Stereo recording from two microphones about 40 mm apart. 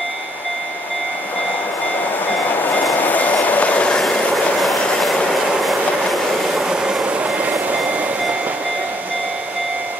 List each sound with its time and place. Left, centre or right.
2.5 s vehicle: left
4.6 s train: centre
6.7 s train: centre
7.3 s vehicle: right